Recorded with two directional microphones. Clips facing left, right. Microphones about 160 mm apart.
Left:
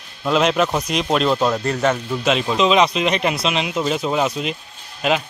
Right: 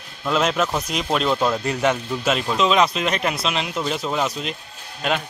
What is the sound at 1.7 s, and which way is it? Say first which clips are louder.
Speech: left 2 dB; 10° right (ahead or behind).